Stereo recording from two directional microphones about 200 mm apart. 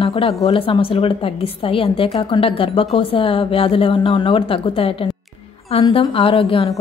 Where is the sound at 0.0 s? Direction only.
30° left (ahead or behind).